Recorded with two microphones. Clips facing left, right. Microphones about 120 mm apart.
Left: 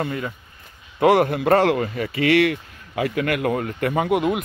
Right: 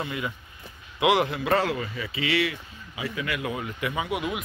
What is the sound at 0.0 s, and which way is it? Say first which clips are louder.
Speech: left 5 dB; 45° left (ahead or behind).